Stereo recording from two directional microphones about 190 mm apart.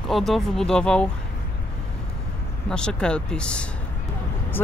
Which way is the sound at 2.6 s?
5° left (ahead or behind).